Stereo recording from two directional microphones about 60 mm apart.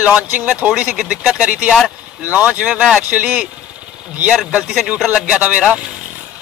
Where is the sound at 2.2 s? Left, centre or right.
Right.